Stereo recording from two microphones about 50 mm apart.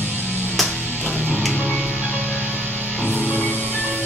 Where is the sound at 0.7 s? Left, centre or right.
Left.